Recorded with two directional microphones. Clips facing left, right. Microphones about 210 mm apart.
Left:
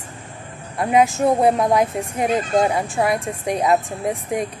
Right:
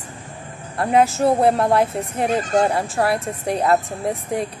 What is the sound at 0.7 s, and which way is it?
A woman's voice, 15° left (ahead or behind).